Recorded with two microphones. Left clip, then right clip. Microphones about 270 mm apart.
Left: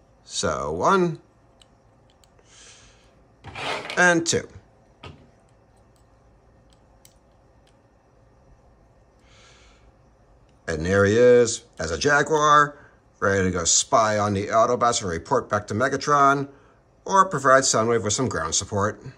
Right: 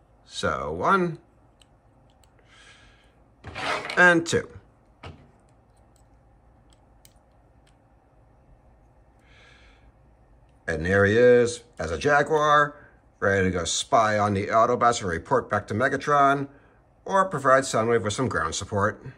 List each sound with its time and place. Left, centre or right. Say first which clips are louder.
0.3 s speech: left 2 dB; centre
2.5 s a sound: left 2 dB; centre
3.6 s filing: right 1 dB; centre
3.9 s speech: right 1 dB; centre
9.3 s a sound: left 1 dB; centre
10.6 s speech: left 1 dB; centre